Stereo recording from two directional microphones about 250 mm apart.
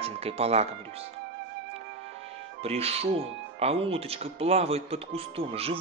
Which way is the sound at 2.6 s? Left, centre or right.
Right.